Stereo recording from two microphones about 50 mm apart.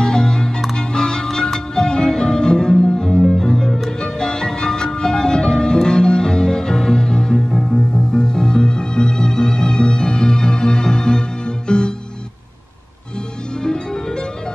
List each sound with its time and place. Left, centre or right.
0.0 s music: centre